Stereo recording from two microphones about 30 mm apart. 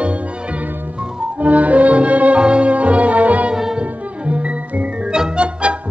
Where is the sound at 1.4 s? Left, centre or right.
Right.